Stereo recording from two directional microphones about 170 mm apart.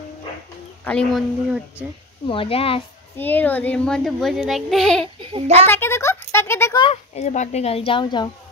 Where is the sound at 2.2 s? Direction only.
30° left (ahead or behind).